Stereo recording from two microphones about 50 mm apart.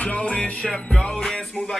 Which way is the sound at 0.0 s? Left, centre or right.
Left.